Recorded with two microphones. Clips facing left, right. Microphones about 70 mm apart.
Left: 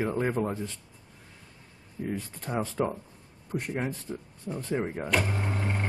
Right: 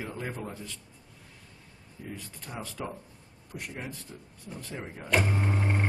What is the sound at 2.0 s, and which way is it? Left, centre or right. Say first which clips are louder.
Speech: left 8 dB; left.